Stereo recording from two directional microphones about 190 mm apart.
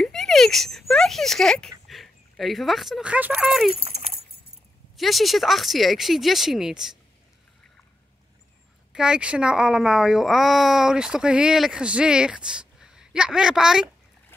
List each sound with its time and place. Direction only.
0.0 s a sound: centre (ahead or behind)
1.9 s speech: centre (ahead or behind)
3.7 s dog: 30° right (ahead or behind)
4.9 s speech: centre (ahead or behind)
8.9 s speech: 5° right (ahead or behind)